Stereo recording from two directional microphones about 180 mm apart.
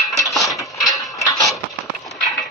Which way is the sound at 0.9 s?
20° left (ahead or behind).